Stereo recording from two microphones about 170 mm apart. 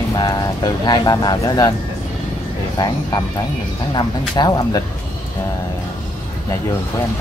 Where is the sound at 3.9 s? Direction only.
25° left (ahead or behind).